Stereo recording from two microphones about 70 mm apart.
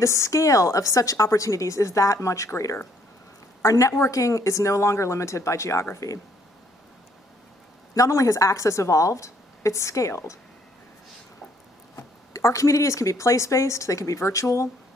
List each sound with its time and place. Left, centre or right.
0.0 s a woman's voice: left
3.6 s a woman's voice: left
7.9 s a woman's voice: left
11.9 s speech: left